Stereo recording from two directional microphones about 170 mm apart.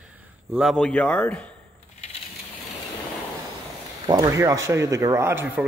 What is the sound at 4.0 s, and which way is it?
Speech, 25° right (ahead or behind).